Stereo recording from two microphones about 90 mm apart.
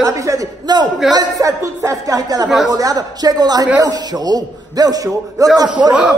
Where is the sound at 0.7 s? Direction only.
55° right (ahead or behind).